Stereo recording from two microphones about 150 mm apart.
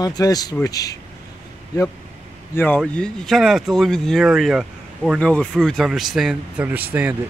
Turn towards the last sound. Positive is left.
turn(degrees=-10)  # may be behind; listen again after turning